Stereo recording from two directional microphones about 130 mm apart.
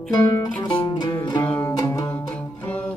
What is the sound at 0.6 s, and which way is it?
Music, 40° left (ahead or behind).